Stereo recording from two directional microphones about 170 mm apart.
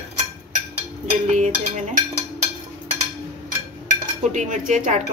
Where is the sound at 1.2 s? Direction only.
45° right (ahead or behind).